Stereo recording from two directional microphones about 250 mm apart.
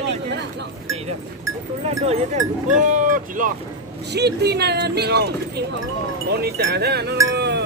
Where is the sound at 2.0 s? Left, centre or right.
Right.